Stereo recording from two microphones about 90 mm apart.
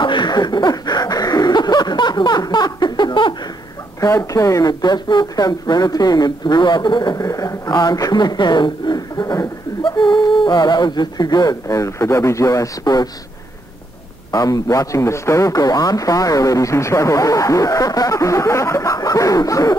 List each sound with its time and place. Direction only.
0.0 s a sound: 60° left (ahead or behind)
4.0 s speech: 40° left (ahead or behind)
14.3 s speech: 40° left (ahead or behind)